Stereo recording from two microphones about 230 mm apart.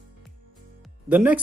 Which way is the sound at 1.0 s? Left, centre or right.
Centre.